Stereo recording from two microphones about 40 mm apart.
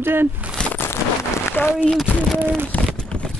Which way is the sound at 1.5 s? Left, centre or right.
Left.